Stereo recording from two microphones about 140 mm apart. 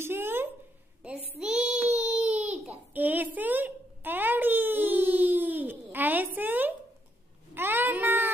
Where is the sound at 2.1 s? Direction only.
10° right (ahead or behind).